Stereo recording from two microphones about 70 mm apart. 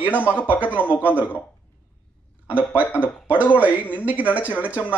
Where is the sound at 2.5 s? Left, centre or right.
Right.